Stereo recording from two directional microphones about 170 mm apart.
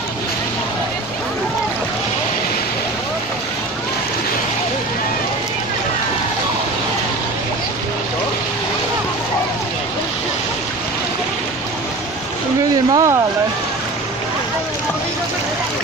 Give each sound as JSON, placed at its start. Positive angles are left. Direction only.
{"t": 12.9, "sound": "vehicle", "side_deg": -20}